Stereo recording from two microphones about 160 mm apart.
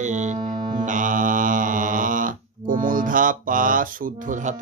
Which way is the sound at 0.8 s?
55° right (ahead or behind).